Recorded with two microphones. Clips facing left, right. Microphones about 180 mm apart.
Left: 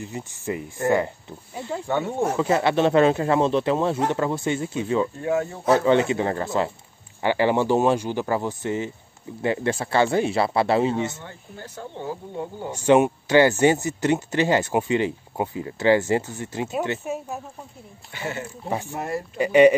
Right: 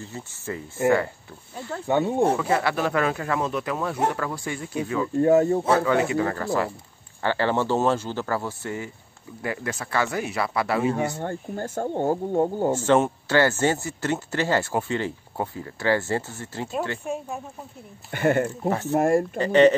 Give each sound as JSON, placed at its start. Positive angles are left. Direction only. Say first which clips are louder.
{"t": 0.0, "sound": "speech", "louder": "left 4 dB", "side_deg": 15}
{"t": 1.9, "sound": "speech", "louder": "right 4 dB", "side_deg": -15}
{"t": 2.3, "sound": "speech", "louder": "left 3 dB", "side_deg": 25}
{"t": 5.2, "sound": "speech", "louder": "right 7 dB", "side_deg": -40}
{"t": 5.7, "sound": "speech", "louder": "left 3 dB", "side_deg": 25}
{"t": 11.2, "sound": "speech", "louder": "right 10 dB", "side_deg": -45}
{"t": 12.7, "sound": "speech", "louder": "left 7 dB", "side_deg": 15}
{"t": 17.0, "sound": "speech", "louder": "even", "side_deg": 5}
{"t": 18.1, "sound": "speech", "louder": "right 10 dB", "side_deg": -55}
{"t": 19.3, "sound": "speech", "louder": "left 4 dB", "side_deg": 10}